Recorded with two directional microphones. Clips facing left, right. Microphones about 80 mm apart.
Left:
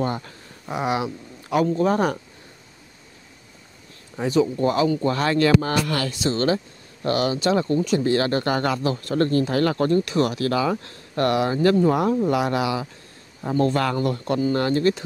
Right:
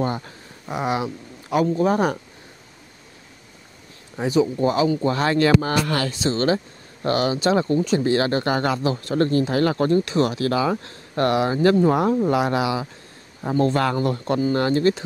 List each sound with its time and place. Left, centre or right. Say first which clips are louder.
0.0 s speech: right 1 dB; centre
0.7 s speech: even; centre
4.2 s speech: right 1 dB; centre
5.6 s speech: right 1 dB; centre
5.9 s speech: right 1 dB; right